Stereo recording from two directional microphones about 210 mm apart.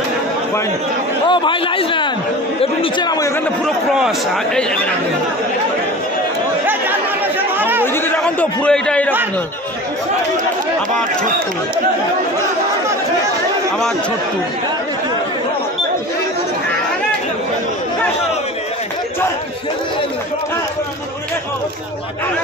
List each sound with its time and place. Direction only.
1.3 s a man's voice: 25° left (ahead or behind)
6.6 s chatter: 10° right (ahead or behind)
7.8 s a man's voice: 10° left (ahead or behind)